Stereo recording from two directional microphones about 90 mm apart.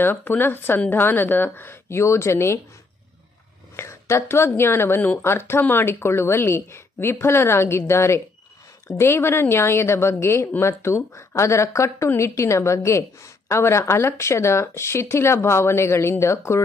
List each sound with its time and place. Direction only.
0.0 s speech: 20° left (ahead or behind)
3.7 s speech: 30° left (ahead or behind)